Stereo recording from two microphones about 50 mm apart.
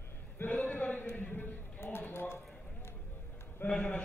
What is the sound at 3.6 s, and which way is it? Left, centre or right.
Speech, left.